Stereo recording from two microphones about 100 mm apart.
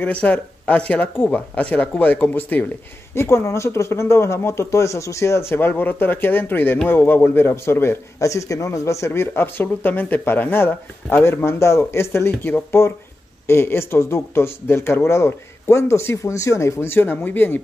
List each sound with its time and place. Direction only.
0.0 s a man's voice: 15° left (ahead or behind)